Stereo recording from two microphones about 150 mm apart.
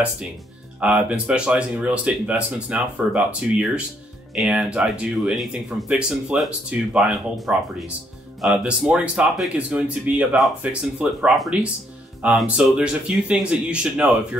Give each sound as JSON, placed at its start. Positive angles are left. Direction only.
{"t": 0.7, "sound": "speech", "side_deg": -5}